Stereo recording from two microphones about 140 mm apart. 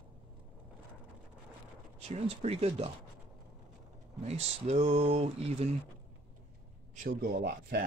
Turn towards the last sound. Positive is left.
turn(degrees=-90)